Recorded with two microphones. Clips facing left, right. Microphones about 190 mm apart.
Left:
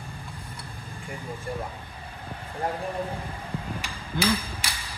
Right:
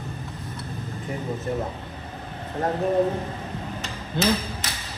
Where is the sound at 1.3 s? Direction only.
10° left (ahead or behind).